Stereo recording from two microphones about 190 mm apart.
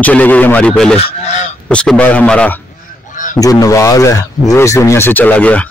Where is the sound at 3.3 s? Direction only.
20° left (ahead or behind).